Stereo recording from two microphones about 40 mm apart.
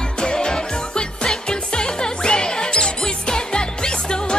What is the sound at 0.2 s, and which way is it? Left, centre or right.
Music, centre.